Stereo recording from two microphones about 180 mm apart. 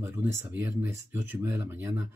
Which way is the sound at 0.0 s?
15° right (ahead or behind).